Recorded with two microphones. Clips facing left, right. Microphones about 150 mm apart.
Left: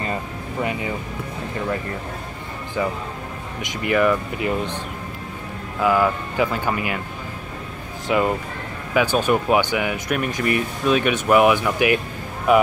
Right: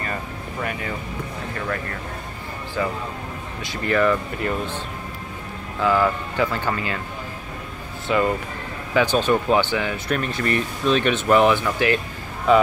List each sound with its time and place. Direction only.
0.6 s speech: 20° left (ahead or behind)
2.8 s speech: 15° left (ahead or behind)
5.8 s speech: 10° left (ahead or behind)
8.1 s speech: 15° left (ahead or behind)